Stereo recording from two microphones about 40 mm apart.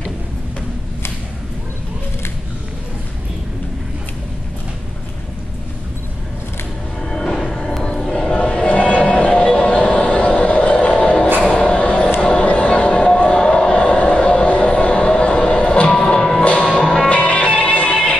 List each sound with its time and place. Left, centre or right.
7.0 s music: centre
7.3 s a sound: centre
8.5 s music: left
11.6 s a sound: left
12.4 s music: left
13.2 s vehicle: left
14.8 s music: left
16.2 s music: centre
17.1 s music: left